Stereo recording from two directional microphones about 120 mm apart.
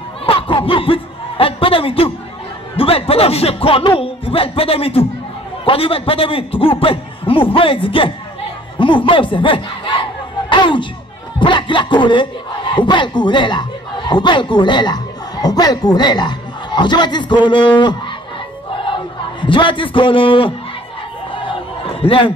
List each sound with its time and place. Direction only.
0.3 s a man's voice: 45° left (ahead or behind)
21.4 s crowd: 45° left (ahead or behind)